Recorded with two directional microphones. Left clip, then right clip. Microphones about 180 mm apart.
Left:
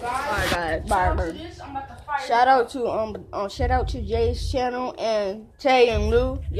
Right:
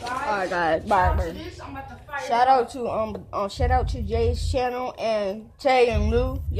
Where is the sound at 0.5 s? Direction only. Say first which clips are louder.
Right 2 dB; 30° right (ahead or behind).